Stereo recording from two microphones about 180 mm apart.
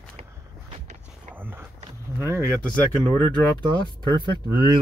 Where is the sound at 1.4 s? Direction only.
10° right (ahead or behind).